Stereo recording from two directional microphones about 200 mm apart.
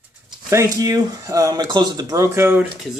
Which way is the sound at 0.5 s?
15° right (ahead or behind).